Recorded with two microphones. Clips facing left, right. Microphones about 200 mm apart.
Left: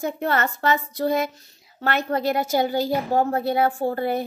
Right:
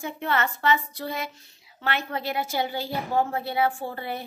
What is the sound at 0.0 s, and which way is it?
A woman's voice, 40° left (ahead or behind).